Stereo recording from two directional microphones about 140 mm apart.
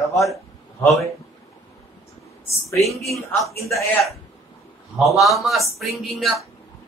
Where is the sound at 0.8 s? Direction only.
20° left (ahead or behind).